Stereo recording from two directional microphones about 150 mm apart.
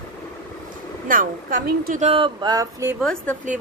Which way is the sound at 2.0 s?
40° right (ahead or behind).